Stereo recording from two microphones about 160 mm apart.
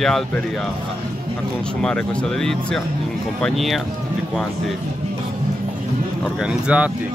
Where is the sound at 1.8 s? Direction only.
5° left (ahead or behind).